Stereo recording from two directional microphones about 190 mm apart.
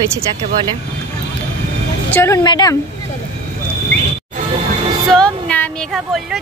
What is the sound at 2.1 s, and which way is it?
Speech, 15° left (ahead or behind).